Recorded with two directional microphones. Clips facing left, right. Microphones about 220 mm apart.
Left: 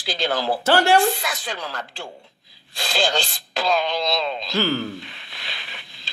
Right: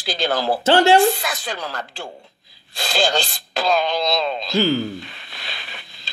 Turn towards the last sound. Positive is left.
turn(degrees=-40)  # may be behind; listen again after turning